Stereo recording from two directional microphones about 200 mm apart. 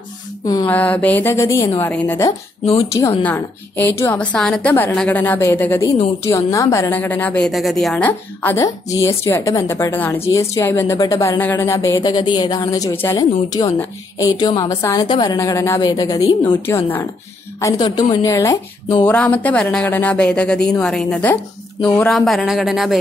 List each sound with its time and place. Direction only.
0.7 s a woman's voice: 5° left (ahead or behind)
19.0 s a woman's voice: 5° left (ahead or behind)